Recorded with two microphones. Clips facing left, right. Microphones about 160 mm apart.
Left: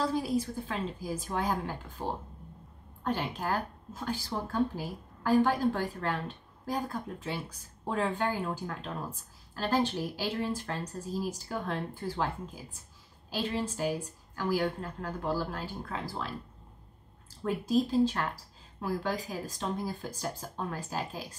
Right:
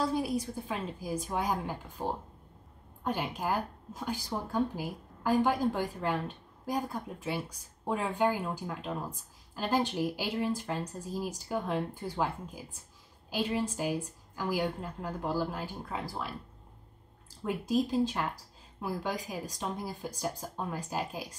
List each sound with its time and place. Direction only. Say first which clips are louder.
0.7 s a woman's voice: left 1 dB; 10° right (ahead or behind)
13.3 s a woman's voice: right 1 dB; 10° right (ahead or behind)
17.5 s a woman's voice: left 1 dB; 15° right (ahead or behind)